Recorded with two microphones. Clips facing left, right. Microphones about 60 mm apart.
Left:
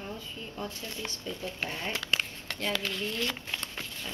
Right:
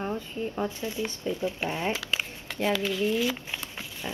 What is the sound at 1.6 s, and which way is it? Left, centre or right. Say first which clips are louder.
Speech: right 6 dB; right.